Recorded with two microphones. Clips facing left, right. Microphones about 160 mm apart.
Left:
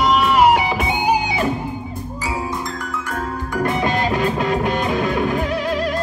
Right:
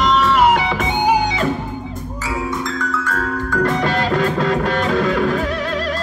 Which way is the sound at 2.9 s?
15° left (ahead or behind).